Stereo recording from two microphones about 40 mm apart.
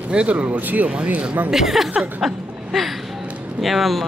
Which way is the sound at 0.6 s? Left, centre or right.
Right.